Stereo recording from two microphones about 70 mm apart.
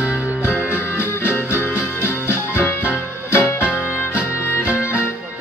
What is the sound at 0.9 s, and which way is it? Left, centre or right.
Music, left.